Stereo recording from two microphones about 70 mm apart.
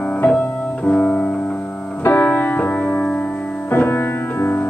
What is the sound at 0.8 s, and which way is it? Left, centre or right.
Music, centre.